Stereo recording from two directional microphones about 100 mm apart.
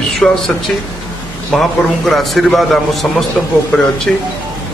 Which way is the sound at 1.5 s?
Centre (ahead or behind).